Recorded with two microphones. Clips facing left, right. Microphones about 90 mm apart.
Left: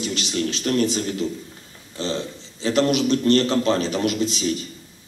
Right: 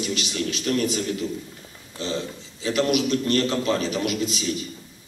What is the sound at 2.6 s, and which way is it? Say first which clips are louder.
Speech: left 3 dB; 35° left (ahead or behind).